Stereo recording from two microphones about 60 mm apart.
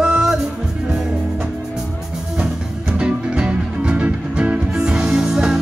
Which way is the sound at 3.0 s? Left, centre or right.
Centre.